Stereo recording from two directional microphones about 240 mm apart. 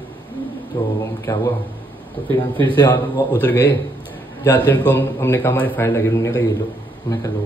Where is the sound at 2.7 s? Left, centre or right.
Centre.